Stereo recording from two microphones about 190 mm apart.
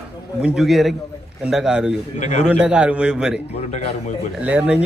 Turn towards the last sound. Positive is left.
turn(degrees=-5)  # may be behind; listen again after turning